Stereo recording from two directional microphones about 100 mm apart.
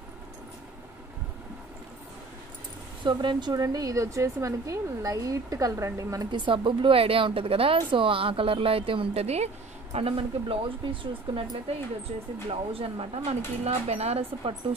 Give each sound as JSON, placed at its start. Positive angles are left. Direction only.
{"t": 3.0, "sound": "a woman's voice", "side_deg": -50}
{"t": 6.3, "sound": "a woman's voice", "side_deg": -55}
{"t": 9.9, "sound": "speech", "side_deg": -75}
{"t": 12.4, "sound": "speech", "side_deg": -70}